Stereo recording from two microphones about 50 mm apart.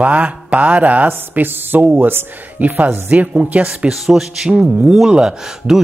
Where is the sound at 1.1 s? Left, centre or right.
Right.